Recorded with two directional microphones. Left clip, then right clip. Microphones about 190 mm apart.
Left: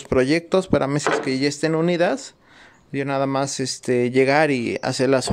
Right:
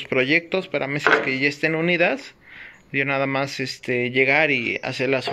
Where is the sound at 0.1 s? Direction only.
30° left (ahead or behind).